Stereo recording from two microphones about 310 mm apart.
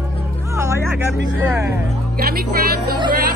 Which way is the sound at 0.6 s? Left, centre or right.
Centre.